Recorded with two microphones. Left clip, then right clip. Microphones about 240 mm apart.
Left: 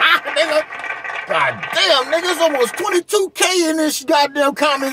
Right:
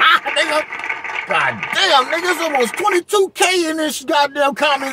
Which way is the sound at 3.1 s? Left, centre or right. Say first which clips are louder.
Right 1 dB; centre.